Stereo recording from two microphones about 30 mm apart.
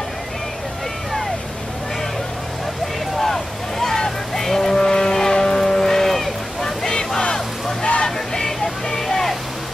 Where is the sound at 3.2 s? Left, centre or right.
Centre.